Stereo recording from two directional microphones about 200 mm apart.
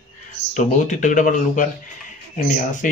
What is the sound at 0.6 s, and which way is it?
Speech, 40° left (ahead or behind).